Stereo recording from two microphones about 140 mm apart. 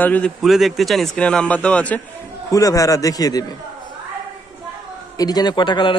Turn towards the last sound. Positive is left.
turn(degrees=35)  # may be behind; listen again after turning